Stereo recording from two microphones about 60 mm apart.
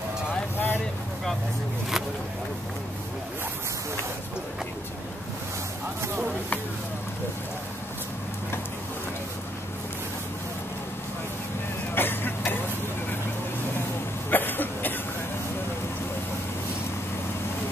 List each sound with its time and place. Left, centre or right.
0.3 s vehicle: left
11.9 s vehicle: left
14.3 s cough: left